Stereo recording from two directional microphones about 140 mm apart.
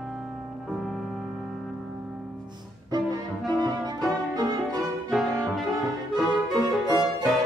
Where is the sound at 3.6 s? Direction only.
30° right (ahead or behind).